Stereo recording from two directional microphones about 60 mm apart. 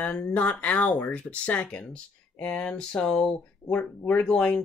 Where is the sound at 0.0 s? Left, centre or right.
Left.